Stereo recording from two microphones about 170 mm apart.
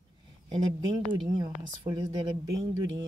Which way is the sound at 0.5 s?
25° right (ahead or behind).